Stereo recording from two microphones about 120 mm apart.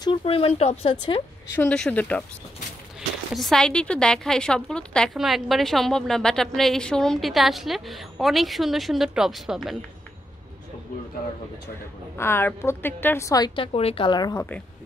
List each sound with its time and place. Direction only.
0.0 s speech: 50° left (ahead or behind)
1.7 s speech: 10° left (ahead or behind)
3.3 s a woman's voice: 5° left (ahead or behind)
12.2 s a woman's voice: 20° left (ahead or behind)
13.6 s speech: 50° left (ahead or behind)
14.3 s speech: 15° left (ahead or behind)